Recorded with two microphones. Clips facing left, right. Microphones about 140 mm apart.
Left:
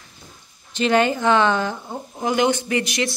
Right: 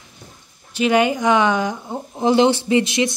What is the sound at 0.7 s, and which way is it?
Speech, 10° right (ahead or behind).